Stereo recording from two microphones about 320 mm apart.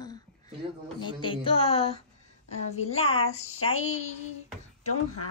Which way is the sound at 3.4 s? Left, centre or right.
Left.